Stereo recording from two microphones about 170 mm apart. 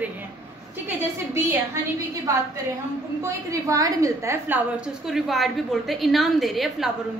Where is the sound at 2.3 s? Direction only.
15° right (ahead or behind); by 6.9 s centre (ahead or behind).